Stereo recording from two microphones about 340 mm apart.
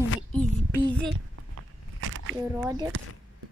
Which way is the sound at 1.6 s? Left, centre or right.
Right.